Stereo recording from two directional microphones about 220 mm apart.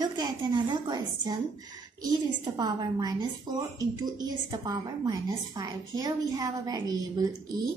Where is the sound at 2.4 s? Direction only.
20° right (ahead or behind).